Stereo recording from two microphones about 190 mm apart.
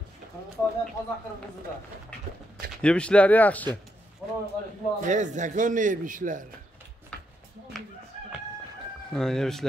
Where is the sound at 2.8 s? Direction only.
5° left (ahead or behind).